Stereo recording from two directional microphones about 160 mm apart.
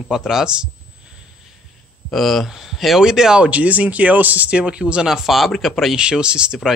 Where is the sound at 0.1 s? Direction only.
5° right (ahead or behind).